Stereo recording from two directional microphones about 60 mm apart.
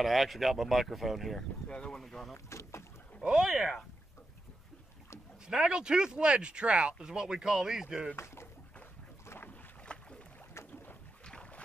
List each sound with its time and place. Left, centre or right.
0.0 s speech: centre
1.7 s speech: centre
2.3 s speech: left
3.3 s speech: centre
5.5 s speech: centre
9.5 s boat: centre
11.2 s boat: centre